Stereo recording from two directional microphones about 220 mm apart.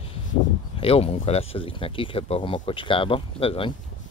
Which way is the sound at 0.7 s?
25° left (ahead or behind).